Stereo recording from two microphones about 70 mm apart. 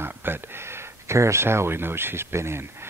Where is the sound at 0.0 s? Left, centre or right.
Right.